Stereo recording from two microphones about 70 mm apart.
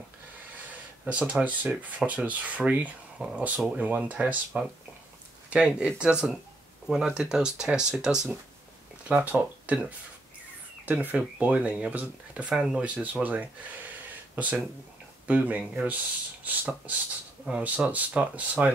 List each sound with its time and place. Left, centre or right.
1.0 s speech: centre
9.0 s speech: centre